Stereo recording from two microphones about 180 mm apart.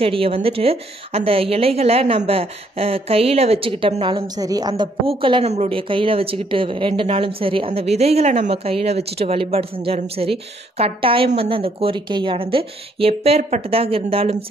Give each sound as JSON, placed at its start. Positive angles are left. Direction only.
{"t": 0.0, "sound": "a woman's voice", "side_deg": -30}